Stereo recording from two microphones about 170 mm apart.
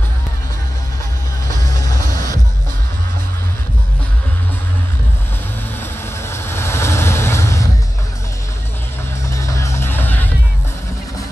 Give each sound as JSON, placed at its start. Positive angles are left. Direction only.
{"t": 1.5, "sound": "music", "side_deg": 20}
{"t": 6.3, "sound": "vehicle", "side_deg": 15}
{"t": 9.3, "sound": "music", "side_deg": 15}